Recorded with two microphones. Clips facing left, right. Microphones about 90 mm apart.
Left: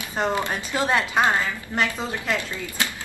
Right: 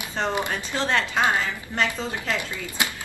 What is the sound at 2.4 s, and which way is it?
Speech, 20° right (ahead or behind).